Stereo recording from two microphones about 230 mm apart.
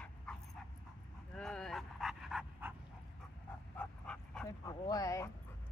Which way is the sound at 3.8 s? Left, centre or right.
Centre.